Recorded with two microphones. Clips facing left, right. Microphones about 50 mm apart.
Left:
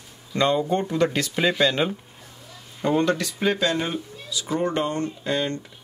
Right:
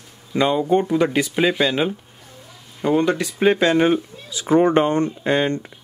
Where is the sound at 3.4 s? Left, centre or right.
Right.